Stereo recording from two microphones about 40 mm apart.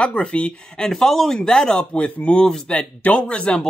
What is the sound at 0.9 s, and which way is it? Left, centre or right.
Speech, centre.